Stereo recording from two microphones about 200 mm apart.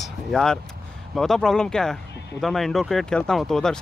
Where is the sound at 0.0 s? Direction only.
Centre (ahead or behind).